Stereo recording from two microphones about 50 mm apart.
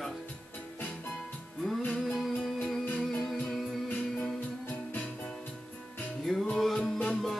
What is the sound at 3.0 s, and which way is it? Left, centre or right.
Music, centre.